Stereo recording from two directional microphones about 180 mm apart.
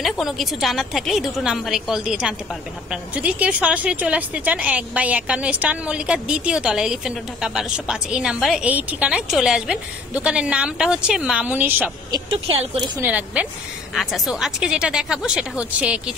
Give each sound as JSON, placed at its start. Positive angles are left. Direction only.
{"t": 0.0, "sound": "a woman's voice", "side_deg": 0}
{"t": 12.1, "sound": "speech", "side_deg": -25}
{"t": 13.0, "sound": "a woman's voice", "side_deg": -5}